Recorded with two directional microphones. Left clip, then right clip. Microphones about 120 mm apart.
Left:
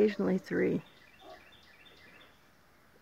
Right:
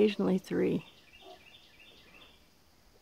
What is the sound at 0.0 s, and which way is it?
Speech, 35° right (ahead or behind).